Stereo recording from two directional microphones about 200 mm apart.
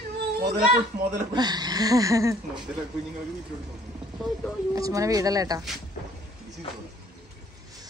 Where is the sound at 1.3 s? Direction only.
20° right (ahead or behind).